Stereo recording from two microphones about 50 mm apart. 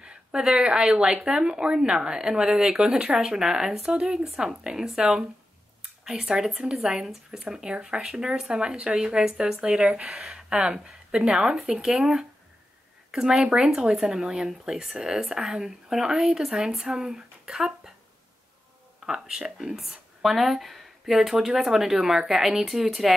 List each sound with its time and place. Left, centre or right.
0.0 s speech: centre
9.8 s speech: right
19.0 s speech: centre